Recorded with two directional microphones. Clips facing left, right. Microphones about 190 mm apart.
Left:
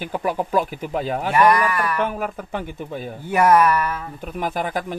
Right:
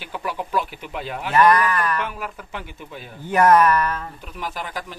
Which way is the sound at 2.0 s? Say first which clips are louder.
Left 6 dB; 45° left (ahead or behind).